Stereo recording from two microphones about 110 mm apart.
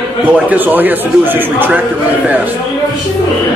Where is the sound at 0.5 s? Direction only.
15° right (ahead or behind).